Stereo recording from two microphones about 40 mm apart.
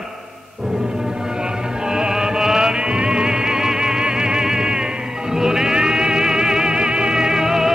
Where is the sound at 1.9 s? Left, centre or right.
Centre.